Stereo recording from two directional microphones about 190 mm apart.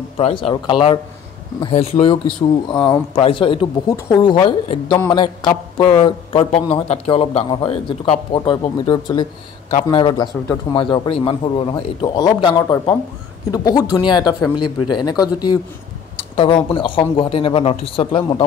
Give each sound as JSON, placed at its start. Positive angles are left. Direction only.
{"t": 0.2, "sound": "a man's voice", "side_deg": 30}